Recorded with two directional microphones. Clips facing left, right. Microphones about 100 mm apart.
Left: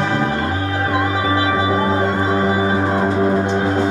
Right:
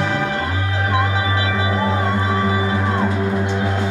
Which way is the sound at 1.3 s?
30° left (ahead or behind).